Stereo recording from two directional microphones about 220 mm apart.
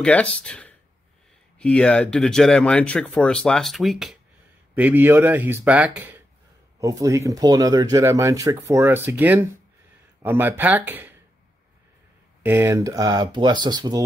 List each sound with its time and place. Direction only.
0.0 s speech: 5° left (ahead or behind)
12.4 s speech: 10° right (ahead or behind)